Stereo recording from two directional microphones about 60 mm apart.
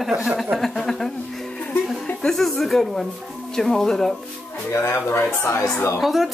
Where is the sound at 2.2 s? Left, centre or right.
Centre.